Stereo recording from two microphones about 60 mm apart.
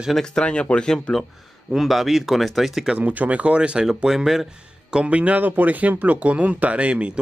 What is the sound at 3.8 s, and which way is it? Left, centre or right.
Speech, centre.